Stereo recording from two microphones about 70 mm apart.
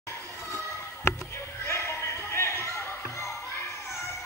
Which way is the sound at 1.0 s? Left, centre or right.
Left.